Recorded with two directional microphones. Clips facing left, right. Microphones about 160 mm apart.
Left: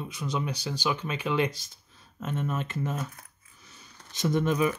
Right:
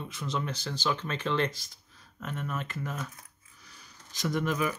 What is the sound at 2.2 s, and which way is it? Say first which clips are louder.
Speech: left 4 dB; 25° left (ahead or behind).